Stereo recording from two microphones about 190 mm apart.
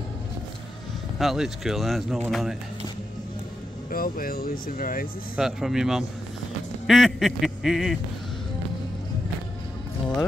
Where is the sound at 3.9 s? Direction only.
50° left (ahead or behind).